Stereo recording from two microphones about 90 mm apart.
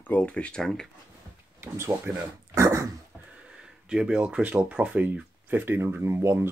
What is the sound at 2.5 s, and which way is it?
Dog, 35° right (ahead or behind).